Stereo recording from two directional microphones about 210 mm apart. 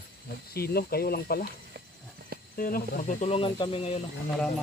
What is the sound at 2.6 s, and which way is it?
Speech, 40° left (ahead or behind).